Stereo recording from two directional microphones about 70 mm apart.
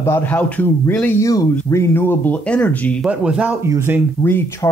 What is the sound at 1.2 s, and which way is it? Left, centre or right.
Speech, left.